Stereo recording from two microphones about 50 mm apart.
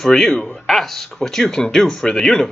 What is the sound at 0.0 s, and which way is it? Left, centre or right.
Speech, centre.